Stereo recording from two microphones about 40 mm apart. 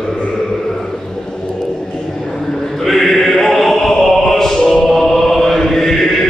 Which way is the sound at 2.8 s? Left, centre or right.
Centre.